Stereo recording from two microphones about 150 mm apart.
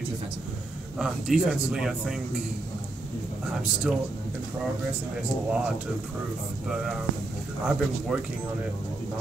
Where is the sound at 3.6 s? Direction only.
5° right (ahead or behind).